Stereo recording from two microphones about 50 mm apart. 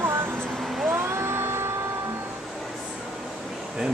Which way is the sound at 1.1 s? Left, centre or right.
Right.